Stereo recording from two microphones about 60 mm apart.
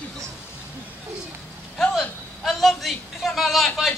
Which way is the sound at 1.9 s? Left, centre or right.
Centre.